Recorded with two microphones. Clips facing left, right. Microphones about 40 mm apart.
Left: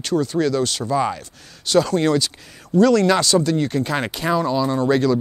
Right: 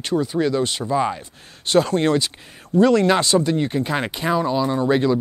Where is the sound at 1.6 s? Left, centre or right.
Right.